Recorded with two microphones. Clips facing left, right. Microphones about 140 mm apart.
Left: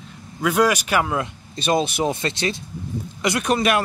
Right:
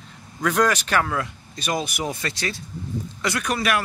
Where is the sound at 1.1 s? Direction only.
25° left (ahead or behind).